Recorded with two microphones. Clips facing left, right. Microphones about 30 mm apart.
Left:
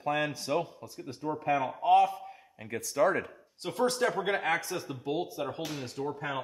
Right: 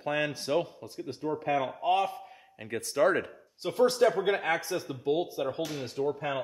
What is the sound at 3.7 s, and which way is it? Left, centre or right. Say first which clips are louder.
Speech: right 4 dB; centre.